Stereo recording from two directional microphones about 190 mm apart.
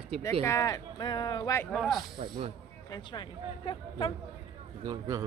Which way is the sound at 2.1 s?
25° right (ahead or behind).